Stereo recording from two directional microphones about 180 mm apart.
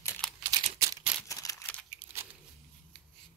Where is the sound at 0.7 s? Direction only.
20° right (ahead or behind).